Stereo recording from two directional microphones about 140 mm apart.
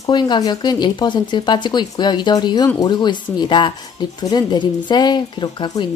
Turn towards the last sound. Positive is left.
turn(degrees=35)  # may be behind; listen again after turning